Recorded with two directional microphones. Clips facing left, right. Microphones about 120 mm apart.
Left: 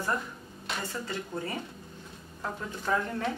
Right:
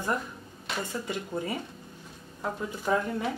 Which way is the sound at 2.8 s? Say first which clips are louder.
Right 2 dB; 10° right (ahead or behind).